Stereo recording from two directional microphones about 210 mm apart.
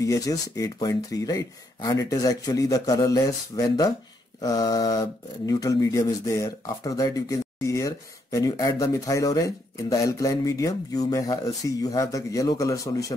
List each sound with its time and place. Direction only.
0.0 s speech: 15° left (ahead or behind)